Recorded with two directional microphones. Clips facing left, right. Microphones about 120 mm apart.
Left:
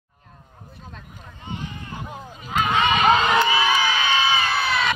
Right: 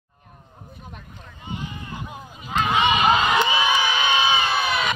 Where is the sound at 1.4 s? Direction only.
15° right (ahead or behind).